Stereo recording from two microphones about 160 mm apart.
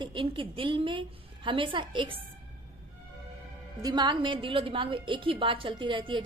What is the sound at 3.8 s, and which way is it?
A woman's voice, 30° right (ahead or behind).